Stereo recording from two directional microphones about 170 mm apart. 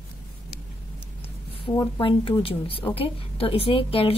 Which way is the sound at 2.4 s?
35° left (ahead or behind).